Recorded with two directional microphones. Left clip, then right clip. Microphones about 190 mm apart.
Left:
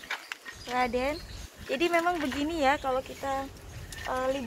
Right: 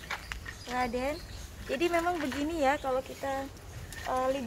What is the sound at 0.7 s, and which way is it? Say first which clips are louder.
Speech: left 3 dB; 25° left (ahead or behind).